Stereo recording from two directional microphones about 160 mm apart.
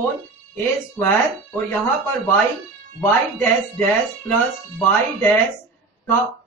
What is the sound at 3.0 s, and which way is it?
Speech, 15° left (ahead or behind).